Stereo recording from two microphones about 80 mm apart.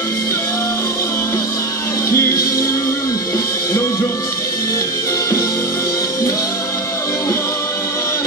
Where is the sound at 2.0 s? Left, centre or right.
Left.